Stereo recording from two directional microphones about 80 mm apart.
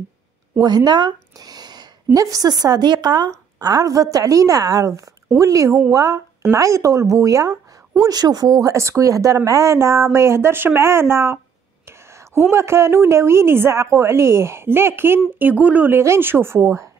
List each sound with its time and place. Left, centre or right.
0.6 s a woman's voice: right
3.3 s a woman's voice: right
8.0 s a woman's voice: right
16.0 s a woman's voice: right